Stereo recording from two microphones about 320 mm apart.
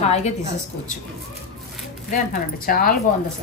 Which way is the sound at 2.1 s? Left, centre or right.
Left.